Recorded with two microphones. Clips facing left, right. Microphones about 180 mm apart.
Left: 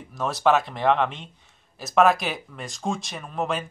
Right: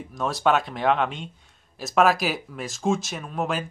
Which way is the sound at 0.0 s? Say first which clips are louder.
Left 1 dB; centre (ahead or behind).